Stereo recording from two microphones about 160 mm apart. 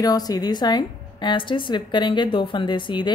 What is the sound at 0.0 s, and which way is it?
A woman's voice, 25° left (ahead or behind).